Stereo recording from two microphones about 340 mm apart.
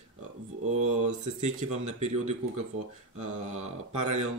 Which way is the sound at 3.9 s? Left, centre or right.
Right.